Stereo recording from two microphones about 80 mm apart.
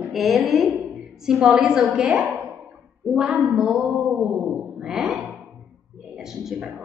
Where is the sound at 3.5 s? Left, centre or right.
Centre.